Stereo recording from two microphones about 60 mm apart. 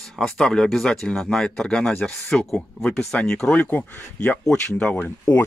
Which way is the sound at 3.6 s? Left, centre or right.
Left.